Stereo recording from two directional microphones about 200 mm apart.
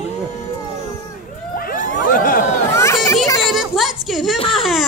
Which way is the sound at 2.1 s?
45° left (ahead or behind).